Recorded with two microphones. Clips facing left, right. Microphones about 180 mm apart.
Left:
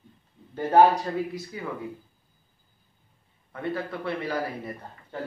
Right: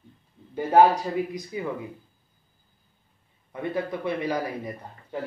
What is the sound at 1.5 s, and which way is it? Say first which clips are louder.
Speech: right 7 dB; 15° right (ahead or behind).